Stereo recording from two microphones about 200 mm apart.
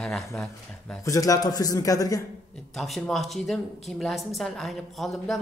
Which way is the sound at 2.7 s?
Centre (ahead or behind).